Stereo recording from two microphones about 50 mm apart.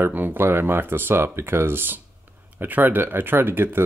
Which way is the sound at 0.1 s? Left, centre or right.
Right.